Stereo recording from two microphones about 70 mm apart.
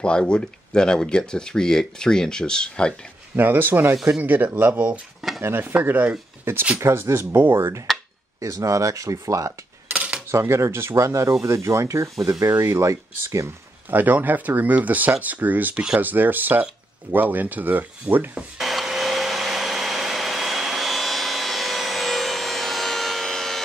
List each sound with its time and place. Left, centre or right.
0.0 s speech: centre
3.3 s speech: right
4.1 s speech: right
5.4 s speech: right
6.5 s speech: right
8.4 s speech: right
9.8 s cutlery: centre
10.3 s speech: right
13.8 s speech: right
18.6 s vacuum cleaner: centre